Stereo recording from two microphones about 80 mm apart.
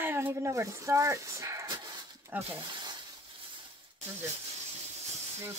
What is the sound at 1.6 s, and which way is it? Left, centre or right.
Dog, right.